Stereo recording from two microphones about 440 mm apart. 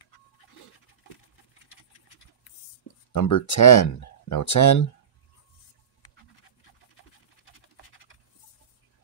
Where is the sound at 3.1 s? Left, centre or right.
Left.